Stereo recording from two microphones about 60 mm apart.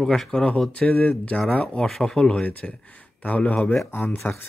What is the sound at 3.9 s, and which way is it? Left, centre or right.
Speech, left.